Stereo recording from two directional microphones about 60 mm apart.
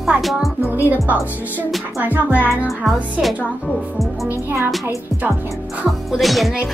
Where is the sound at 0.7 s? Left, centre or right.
Right.